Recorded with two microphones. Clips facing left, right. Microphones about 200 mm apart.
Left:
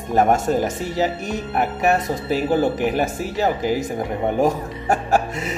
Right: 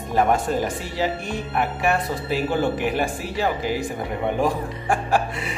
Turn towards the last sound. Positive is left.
turn(degrees=45)  # may be behind; listen again after turning